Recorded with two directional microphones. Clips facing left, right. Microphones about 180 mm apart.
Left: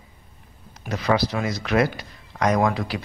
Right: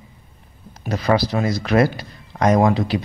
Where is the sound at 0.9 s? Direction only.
35° right (ahead or behind).